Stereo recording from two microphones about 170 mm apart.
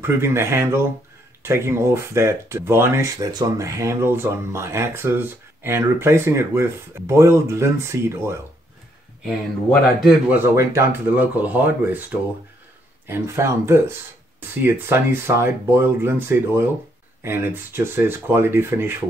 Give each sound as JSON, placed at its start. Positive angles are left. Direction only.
{"t": 0.0, "sound": "speech", "side_deg": -15}
{"t": 9.2, "sound": "speech", "side_deg": 0}
{"t": 10.3, "sound": "speech", "side_deg": -15}